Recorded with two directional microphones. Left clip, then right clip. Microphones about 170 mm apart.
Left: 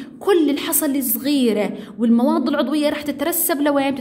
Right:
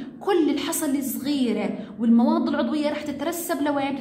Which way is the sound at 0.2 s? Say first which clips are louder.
Left 5 dB; 40° left (ahead or behind).